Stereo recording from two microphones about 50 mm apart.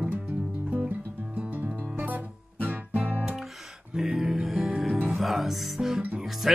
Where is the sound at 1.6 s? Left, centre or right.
Right.